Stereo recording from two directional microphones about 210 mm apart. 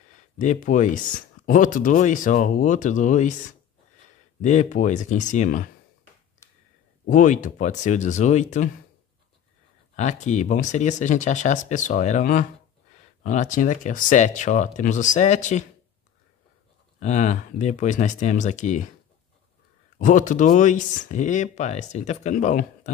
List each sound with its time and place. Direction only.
0.4 s speech: 35° left (ahead or behind)
4.4 s speech: 35° left (ahead or behind)
7.1 s speech: 35° left (ahead or behind)
9.9 s speech: 35° left (ahead or behind)
17.0 s speech: 35° left (ahead or behind)
20.0 s speech: 35° left (ahead or behind)